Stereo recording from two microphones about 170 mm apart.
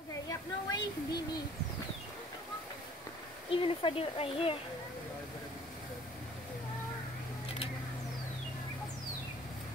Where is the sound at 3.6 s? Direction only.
35° left (ahead or behind).